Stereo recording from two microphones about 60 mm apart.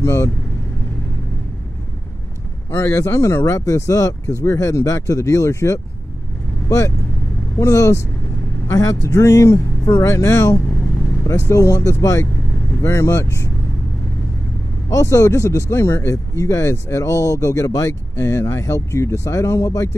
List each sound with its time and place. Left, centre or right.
0.0 s speech: left
2.7 s speech: left
7.5 s speech: left
11.5 s speech: left
14.9 s speech: left
18.1 s speech: left